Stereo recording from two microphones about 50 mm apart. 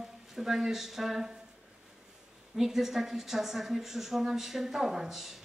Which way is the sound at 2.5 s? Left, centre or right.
Centre.